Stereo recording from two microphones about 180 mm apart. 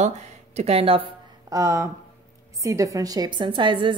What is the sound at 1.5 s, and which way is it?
A woman's voice, 15° right (ahead or behind).